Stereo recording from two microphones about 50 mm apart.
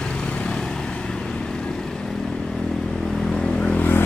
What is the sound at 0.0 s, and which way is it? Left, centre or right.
Vehicle, left.